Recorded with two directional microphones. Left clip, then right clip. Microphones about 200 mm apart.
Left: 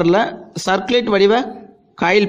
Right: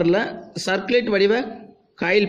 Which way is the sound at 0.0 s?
25° left (ahead or behind).